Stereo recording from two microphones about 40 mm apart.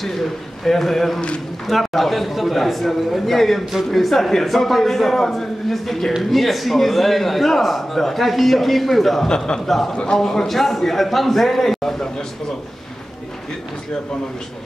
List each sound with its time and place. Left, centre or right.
0.0 s a man's voice: centre